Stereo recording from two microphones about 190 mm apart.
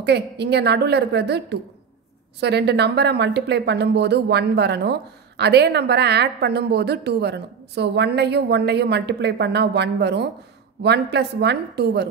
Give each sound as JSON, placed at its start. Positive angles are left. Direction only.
{"t": 0.0, "sound": "speech", "side_deg": -60}